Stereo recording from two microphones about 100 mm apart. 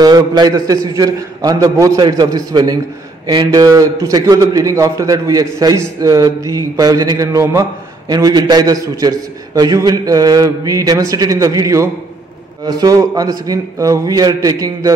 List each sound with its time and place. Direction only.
0.0 s a man's voice: 45° right (ahead or behind)
8.1 s a man's voice: 45° right (ahead or behind)